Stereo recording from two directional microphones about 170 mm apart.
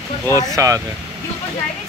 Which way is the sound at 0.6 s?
20° right (ahead or behind).